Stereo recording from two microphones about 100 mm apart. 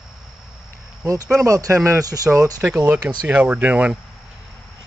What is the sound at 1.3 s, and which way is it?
Speech, 30° right (ahead or behind).